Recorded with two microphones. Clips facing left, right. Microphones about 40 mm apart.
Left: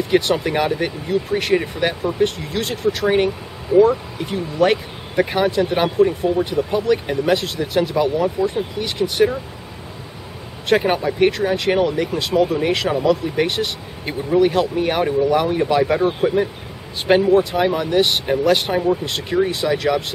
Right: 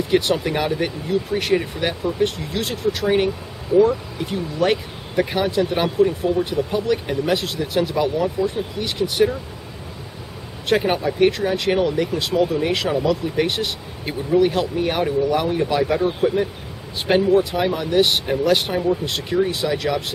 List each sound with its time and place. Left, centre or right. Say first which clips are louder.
0.1 s speech: left 2 dB; centre
3.7 s speech: left 2 dB; left
4.2 s speech: left 4 dB; centre
10.9 s speech: left 1 dB; centre